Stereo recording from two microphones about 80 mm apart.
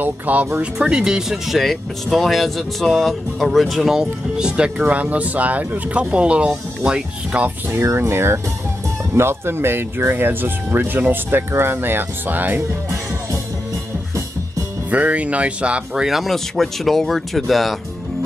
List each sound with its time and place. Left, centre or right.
0.0 s speech: centre
7.8 s speech: right
14.9 s speech: centre